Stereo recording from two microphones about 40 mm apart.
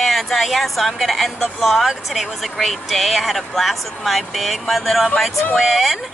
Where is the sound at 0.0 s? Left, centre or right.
Centre.